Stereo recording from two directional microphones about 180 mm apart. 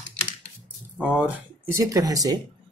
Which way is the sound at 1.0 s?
5° right (ahead or behind).